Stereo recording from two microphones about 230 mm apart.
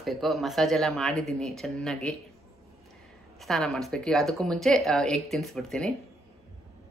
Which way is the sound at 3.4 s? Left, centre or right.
Centre.